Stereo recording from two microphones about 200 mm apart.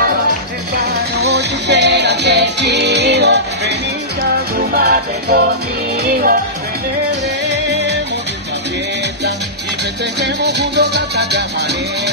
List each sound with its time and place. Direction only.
0.9 s music: 55° right (ahead or behind)
7.4 s music: 60° right (ahead or behind)
10.2 s music: 60° right (ahead or behind)